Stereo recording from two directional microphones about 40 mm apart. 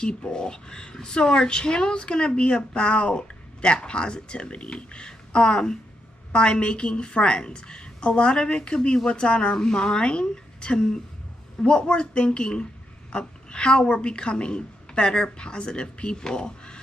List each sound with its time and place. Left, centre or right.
0.0 s a woman's voice: left